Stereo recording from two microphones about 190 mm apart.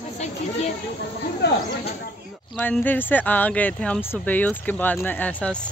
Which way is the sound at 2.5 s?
10° left (ahead or behind).